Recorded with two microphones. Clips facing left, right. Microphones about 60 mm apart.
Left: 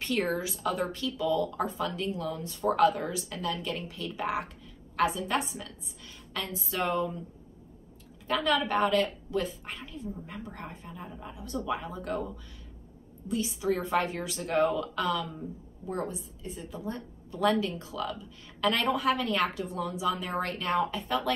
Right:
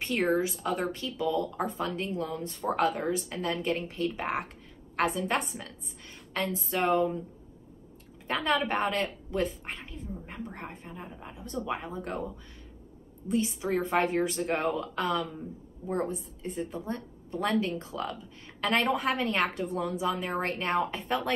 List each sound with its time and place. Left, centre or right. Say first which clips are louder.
0.0 s a woman's voice: right 3 dB; right
8.3 s a woman's voice: left 1 dB; right
13.3 s a woman's voice: right 1 dB; right